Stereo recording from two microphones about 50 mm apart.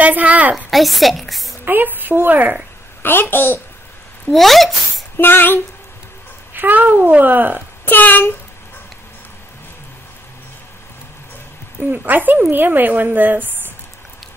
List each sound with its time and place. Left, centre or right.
0.0 s a sound: right
0.7 s a woman's voice: centre
1.6 s a woman's voice: right
3.0 s a child's voice: left
4.3 s speech: centre
5.1 s a child's voice: left
6.5 s a woman's voice: right
7.8 s a child's voice: left
12.1 s a woman's voice: right